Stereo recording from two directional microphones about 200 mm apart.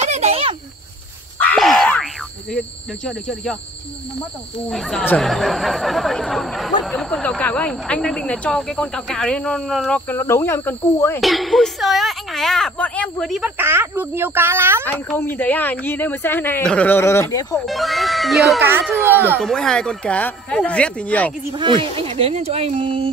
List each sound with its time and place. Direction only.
0.0 s cricket: 35° right (ahead or behind)
1.4 s boing: 5° left (ahead or behind)
2.5 s speech: 5° left (ahead or behind)
4.6 s speech: centre (ahead or behind)
11.1 s speech: centre (ahead or behind)
14.9 s speech: 10° left (ahead or behind)
17.6 s speech: centre (ahead or behind)
19.4 s speech: 5° left (ahead or behind)
21.5 s speech: 25° right (ahead or behind)